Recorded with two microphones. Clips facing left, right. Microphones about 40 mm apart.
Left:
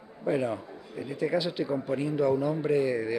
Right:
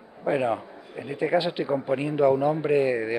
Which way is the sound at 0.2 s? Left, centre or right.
Right.